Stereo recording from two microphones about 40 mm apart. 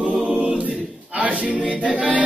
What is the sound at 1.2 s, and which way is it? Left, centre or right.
Music, right.